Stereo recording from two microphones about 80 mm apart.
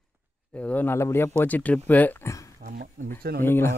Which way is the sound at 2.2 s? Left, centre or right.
Left.